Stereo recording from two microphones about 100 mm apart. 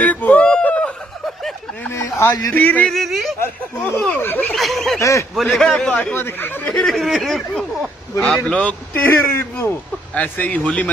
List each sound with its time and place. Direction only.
0.0 s a sound: 15° left (ahead or behind)
1.9 s speech: 30° left (ahead or behind)
2.5 s speech: 15° left (ahead or behind)
2.9 s speech: centre (ahead or behind)
4.1 s speech: 20° left (ahead or behind)
4.6 s speech: centre (ahead or behind)
4.9 s speech: 30° left (ahead or behind)
5.3 s speech: centre (ahead or behind)
6.1 s speech: 20° left (ahead or behind)
6.8 s speech: centre (ahead or behind)